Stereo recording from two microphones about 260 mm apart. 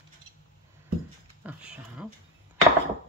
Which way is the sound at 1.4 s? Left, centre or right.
Centre.